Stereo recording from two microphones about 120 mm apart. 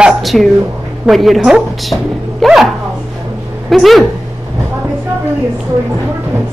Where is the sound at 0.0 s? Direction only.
Centre (ahead or behind).